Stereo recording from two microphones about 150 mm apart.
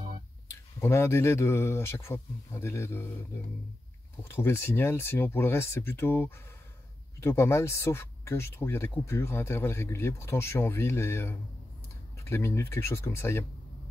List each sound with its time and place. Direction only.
0.7 s speech: 15° left (ahead or behind)
4.2 s speech: 15° left (ahead or behind)